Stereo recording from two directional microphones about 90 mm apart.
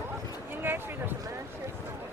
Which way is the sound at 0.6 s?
25° right (ahead or behind).